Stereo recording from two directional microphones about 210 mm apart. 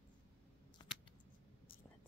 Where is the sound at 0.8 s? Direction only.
25° left (ahead or behind).